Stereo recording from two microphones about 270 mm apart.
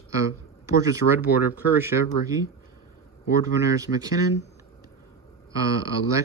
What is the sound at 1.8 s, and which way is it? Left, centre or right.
Speech, centre.